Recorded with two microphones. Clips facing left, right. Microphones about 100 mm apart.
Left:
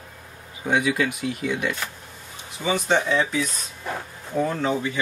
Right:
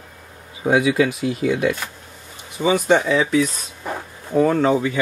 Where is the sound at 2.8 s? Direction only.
85° right.